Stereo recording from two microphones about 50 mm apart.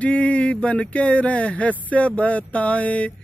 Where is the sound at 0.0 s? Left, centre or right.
Left.